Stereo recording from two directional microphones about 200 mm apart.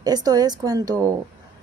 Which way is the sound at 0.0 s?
20° right (ahead or behind).